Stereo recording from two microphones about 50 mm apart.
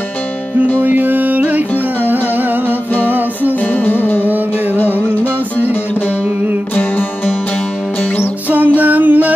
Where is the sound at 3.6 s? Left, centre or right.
Left.